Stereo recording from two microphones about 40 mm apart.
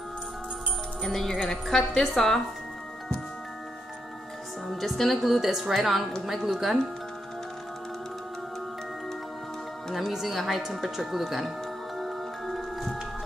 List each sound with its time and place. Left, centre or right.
1.0 s a woman's voice: centre
4.6 s a woman's voice: centre
10.1 s a woman's voice: centre
12.0 s music: centre